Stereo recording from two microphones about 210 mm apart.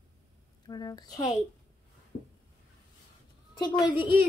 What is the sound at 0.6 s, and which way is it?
Speech, 20° left (ahead or behind).